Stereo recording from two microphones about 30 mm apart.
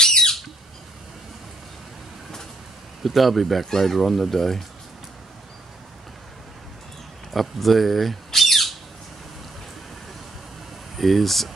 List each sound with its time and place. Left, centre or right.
0.0 s squawk: centre
3.0 s speech: centre
7.3 s speech: centre
11.0 s speech: centre